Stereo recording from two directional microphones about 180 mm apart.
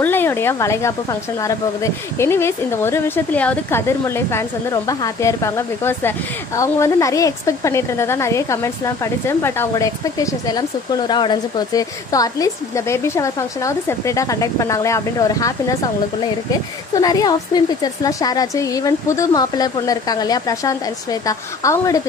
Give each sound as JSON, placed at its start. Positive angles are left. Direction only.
{"t": 0.0, "sound": "speech", "side_deg": 10}
{"t": 16.9, "sound": "speech", "side_deg": 20}